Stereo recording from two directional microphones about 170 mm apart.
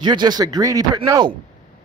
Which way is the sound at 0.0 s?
25° right (ahead or behind).